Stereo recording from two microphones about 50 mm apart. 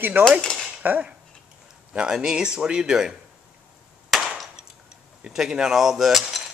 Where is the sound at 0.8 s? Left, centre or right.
Right.